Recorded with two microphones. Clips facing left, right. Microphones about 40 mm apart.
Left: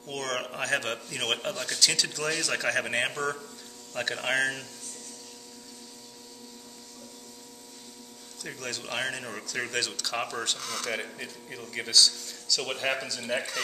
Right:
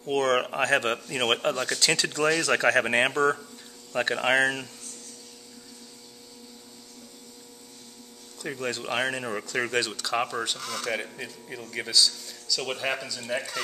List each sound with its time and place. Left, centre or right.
0.0 s speech: right
2.8 s speech: centre
8.4 s speech: right; by 13.2 s centre
13.2 s speech: centre